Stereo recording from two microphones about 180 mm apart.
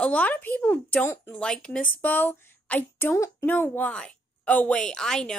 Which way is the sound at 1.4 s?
5° left (ahead or behind).